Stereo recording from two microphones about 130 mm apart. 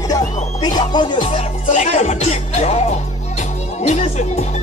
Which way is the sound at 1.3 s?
60° left (ahead or behind).